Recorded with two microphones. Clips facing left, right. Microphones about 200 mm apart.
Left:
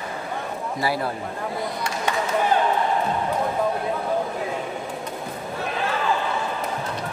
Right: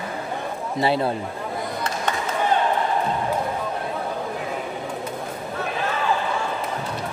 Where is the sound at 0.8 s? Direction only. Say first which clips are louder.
Right 4 dB; 25° right (ahead or behind).